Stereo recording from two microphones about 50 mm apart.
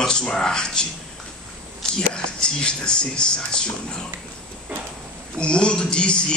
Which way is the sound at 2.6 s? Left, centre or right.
Centre.